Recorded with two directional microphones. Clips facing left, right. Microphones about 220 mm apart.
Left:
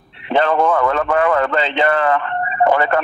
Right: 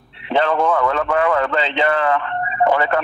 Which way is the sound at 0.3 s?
50° left (ahead or behind).